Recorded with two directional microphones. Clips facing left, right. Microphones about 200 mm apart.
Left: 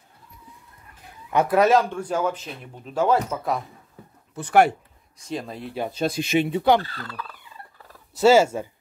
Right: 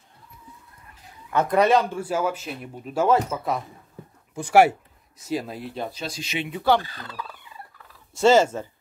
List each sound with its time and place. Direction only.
1.3 s speech: 10° left (ahead or behind)
5.9 s speech: 55° left (ahead or behind)
6.8 s speech: 15° right (ahead or behind)
8.2 s speech: 10° left (ahead or behind)